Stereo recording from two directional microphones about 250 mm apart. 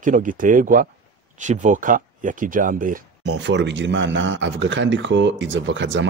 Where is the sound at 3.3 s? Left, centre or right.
Right.